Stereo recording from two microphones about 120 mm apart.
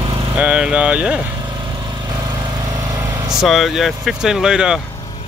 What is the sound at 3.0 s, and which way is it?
Vehicle, 20° right (ahead or behind).